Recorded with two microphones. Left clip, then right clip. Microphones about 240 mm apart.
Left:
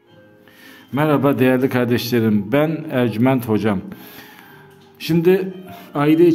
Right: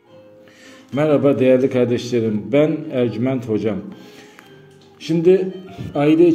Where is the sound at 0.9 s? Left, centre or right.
Left.